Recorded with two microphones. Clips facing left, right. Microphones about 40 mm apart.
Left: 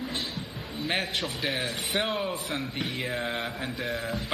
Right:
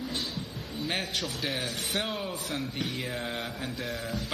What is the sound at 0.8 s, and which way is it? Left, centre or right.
A man's voice, centre.